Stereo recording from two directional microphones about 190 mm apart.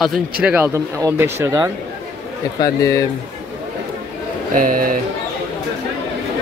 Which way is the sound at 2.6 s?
15° left (ahead or behind).